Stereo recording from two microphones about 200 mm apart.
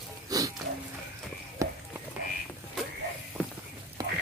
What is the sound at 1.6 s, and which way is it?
Run, 15° right (ahead or behind).